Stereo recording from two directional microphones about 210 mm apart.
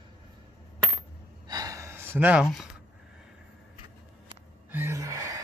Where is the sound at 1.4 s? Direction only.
20° right (ahead or behind).